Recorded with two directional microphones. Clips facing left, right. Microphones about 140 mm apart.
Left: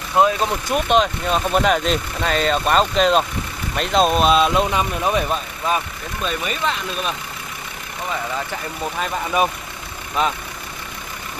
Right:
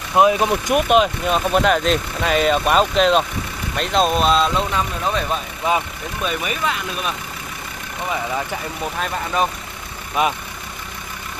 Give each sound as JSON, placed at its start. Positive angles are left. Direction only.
{"t": 0.1, "sound": "speech", "side_deg": -15}
{"t": 6.2, "sound": "speech", "side_deg": -5}
{"t": 8.9, "sound": "speech", "side_deg": 5}
{"t": 10.2, "sound": "speech", "side_deg": -5}